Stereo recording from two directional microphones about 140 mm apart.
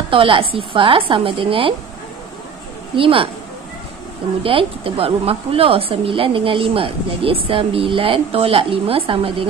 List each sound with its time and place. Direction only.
0.1 s a woman's voice: 40° right (ahead or behind)
3.0 s a woman's voice: 40° right (ahead or behind)
4.4 s a woman's voice: 40° right (ahead or behind)